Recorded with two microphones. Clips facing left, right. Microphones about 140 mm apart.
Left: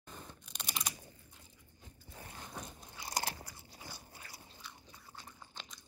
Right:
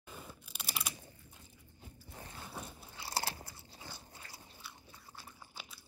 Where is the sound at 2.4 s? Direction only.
5° right (ahead or behind).